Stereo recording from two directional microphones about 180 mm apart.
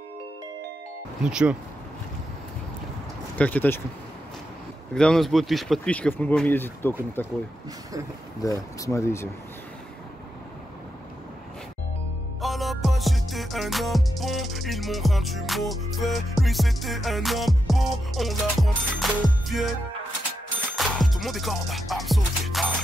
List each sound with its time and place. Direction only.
1.2 s speech: 5° right (ahead or behind)
3.3 s speech: 10° left (ahead or behind)
4.9 s speech: 5° left (ahead or behind)
8.4 s speech: 20° left (ahead or behind)
12.4 s music: centre (ahead or behind)
20.7 s music: centre (ahead or behind)